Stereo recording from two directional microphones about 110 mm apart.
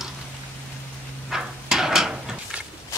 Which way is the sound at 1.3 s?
5° right (ahead or behind).